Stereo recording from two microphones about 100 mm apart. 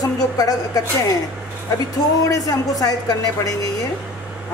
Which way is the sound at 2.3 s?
40° left (ahead or behind).